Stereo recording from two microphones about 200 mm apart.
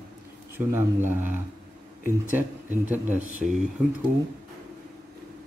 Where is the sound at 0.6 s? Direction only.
10° right (ahead or behind).